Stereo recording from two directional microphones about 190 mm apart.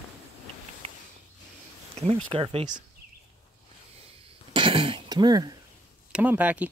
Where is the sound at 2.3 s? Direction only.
30° right (ahead or behind).